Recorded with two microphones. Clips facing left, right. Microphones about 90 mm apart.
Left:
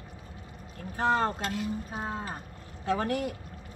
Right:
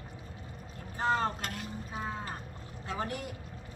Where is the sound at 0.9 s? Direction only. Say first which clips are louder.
Left 3 dB; 55° left (ahead or behind).